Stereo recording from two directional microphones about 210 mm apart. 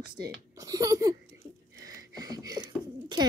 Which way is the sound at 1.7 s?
15° right (ahead or behind).